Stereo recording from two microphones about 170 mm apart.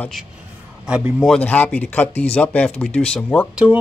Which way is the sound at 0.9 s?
5° right (ahead or behind).